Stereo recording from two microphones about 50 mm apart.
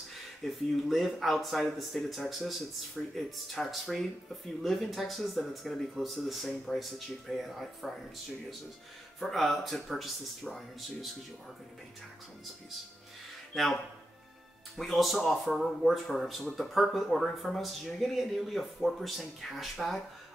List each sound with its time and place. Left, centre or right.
0.1 s speech: centre
9.2 s speech: centre
14.8 s speech: centre